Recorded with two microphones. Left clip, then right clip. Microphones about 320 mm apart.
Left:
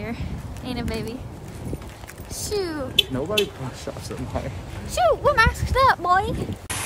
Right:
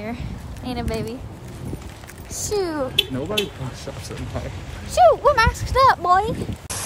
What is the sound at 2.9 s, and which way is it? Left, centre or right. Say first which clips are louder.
Speech: left 4 dB; right.